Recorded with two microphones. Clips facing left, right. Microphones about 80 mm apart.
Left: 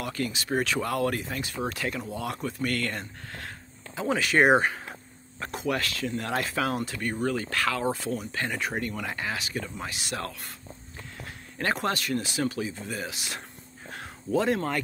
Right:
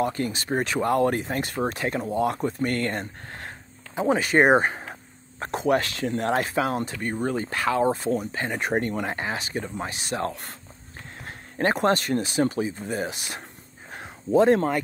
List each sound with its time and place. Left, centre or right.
0.0 s speech: right
1.4 s speech: right
1.7 s speech: right
8.5 s speech: right
11.2 s a sound: right
11.8 s speech: right
13.9 s a sound: right